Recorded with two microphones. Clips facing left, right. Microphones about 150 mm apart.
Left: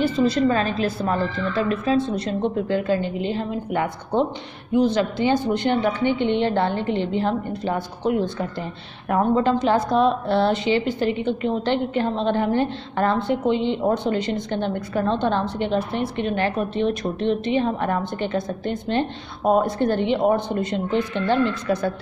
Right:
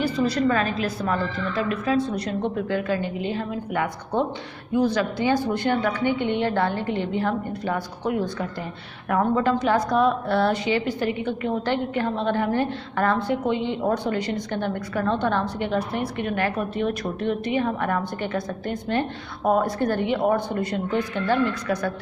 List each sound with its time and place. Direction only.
0.0 s a woman's voice: 25° left (ahead or behind)